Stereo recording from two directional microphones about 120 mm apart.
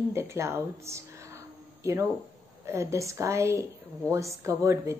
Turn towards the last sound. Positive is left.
turn(degrees=-25)  # may be behind; listen again after turning